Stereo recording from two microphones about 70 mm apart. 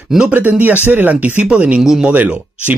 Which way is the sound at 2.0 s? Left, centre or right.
Centre.